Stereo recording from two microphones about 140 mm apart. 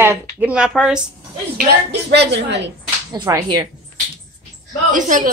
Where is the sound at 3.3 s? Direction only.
20° right (ahead or behind).